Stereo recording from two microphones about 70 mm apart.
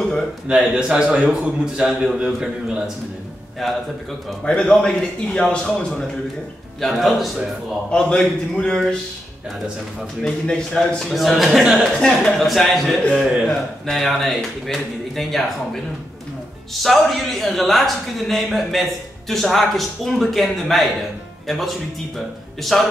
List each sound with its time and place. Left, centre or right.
0.5 s a man's voice: centre
3.6 s a man's voice: centre
4.5 s a man's voice: centre
6.8 s a man's voice: centre
7.9 s a man's voice: centre
10.2 s a man's voice: centre
11.1 s a man's voice: centre
12.0 s a man's voice: centre
13.1 s a man's voice: centre
13.5 s a man's voice: centre
16.8 s a man's voice: centre